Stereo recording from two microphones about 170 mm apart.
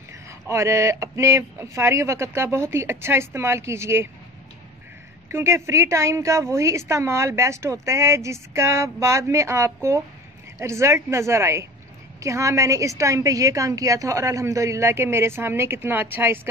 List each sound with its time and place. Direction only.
0.5 s speech: 15° right (ahead or behind)
5.3 s speech: 15° right (ahead or behind)